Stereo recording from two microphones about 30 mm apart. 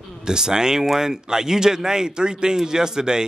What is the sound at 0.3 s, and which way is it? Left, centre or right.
Speech, right.